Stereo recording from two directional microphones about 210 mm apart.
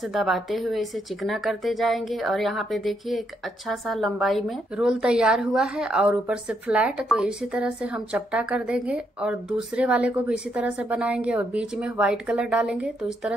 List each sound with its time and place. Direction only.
0.1 s a woman's voice: centre (ahead or behind)